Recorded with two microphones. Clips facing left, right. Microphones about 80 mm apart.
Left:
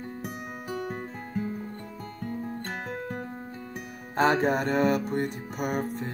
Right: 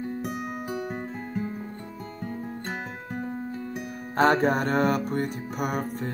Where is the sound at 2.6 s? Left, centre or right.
Centre.